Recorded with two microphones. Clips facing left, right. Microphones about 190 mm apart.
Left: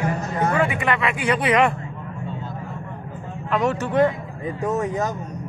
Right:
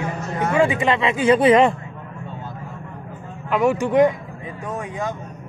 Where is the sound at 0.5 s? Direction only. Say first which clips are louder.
Right 7 dB; 20° right (ahead or behind).